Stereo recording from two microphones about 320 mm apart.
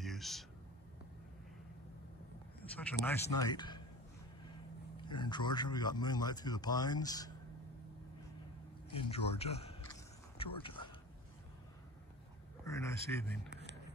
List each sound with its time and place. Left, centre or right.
0.0 s a sound: centre
2.7 s a man's voice: centre
5.0 s a man's voice: centre
8.9 s speech: centre
12.6 s a man's voice: centre